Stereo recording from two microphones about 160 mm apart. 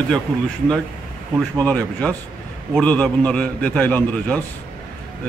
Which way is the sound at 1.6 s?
10° left (ahead or behind).